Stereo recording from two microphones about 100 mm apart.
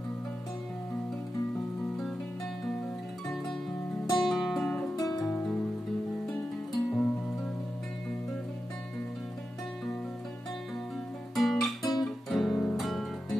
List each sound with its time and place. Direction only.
4.2 s music: centre (ahead or behind)
4.9 s music: 35° left (ahead or behind)
6.2 s music: 5° left (ahead or behind)
11.3 s guitar: centre (ahead or behind)
12.0 s music: centre (ahead or behind)